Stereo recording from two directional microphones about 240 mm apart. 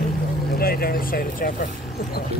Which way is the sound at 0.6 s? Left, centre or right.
Left.